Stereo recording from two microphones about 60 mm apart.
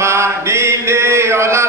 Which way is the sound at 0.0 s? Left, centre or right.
Right.